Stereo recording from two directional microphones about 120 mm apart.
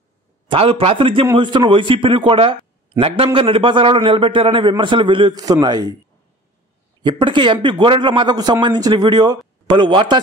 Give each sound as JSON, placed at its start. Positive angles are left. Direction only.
{"t": 0.5, "sound": "a man's voice", "side_deg": -50}
{"t": 7.0, "sound": "a man's voice", "side_deg": -40}